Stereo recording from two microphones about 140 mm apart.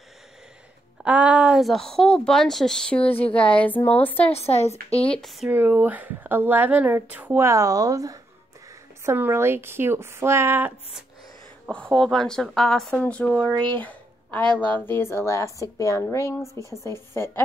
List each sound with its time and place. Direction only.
1.0 s a woman's voice: 10° right (ahead or behind); by 4.3 s 10° left (ahead or behind)
4.3 s speech: 45° left (ahead or behind)
5.1 s a woman's voice: centre (ahead or behind)
5.5 s a woman's voice: 15° right (ahead or behind)
11.7 s a woman's voice: 5° left (ahead or behind)
13.5 s speech: 35° right (ahead or behind)
13.7 s a woman's voice: 10° left (ahead or behind)